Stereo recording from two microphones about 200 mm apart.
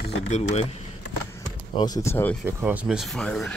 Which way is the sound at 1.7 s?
20° left (ahead or behind).